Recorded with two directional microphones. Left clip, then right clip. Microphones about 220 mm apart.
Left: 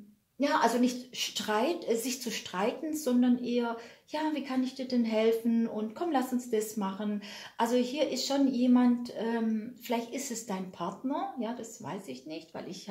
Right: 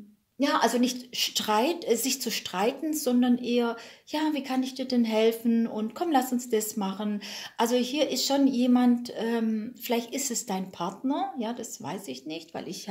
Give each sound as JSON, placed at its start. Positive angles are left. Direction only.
{"t": 0.4, "sound": "a woman's voice", "side_deg": -40}